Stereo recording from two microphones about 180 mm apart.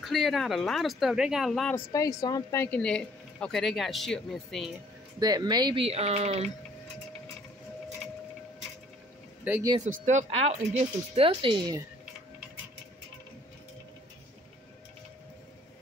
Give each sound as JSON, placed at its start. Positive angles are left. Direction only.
{"t": 0.0, "sound": "speech", "side_deg": 0}
{"t": 1.9, "sound": "speech", "side_deg": 20}
{"t": 5.2, "sound": "speech", "side_deg": -20}
{"t": 9.4, "sound": "speech", "side_deg": -10}
{"t": 10.0, "sound": "speech", "side_deg": -40}